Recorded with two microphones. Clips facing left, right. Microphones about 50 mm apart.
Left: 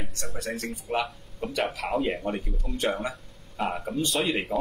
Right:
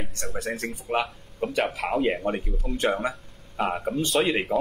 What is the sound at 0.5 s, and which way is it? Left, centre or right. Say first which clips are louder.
Speech: right 2 dB; centre.